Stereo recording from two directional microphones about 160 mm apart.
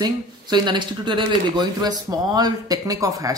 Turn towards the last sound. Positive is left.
turn(degrees=-20)  # may be behind; listen again after turning